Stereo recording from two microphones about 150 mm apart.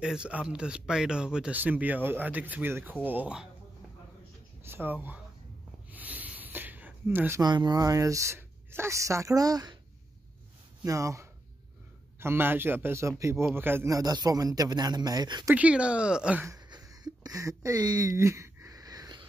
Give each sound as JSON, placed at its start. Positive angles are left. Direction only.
{"t": 0.0, "sound": "speech", "side_deg": -5}
{"t": 4.6, "sound": "speech", "side_deg": -15}
{"t": 5.9, "sound": "a sound", "side_deg": -10}
{"t": 7.4, "sound": "speech", "side_deg": -30}
{"t": 10.8, "sound": "speech", "side_deg": -20}
{"t": 15.5, "sound": "speech", "side_deg": -10}
{"t": 16.4, "sound": "a sound", "side_deg": -25}